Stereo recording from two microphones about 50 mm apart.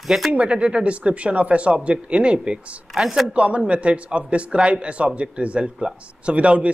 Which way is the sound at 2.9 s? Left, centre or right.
Centre.